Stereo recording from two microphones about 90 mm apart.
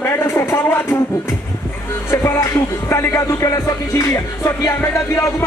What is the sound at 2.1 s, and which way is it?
Music, 35° left (ahead or behind).